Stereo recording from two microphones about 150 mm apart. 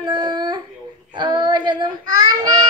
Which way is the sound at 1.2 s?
30° right (ahead or behind).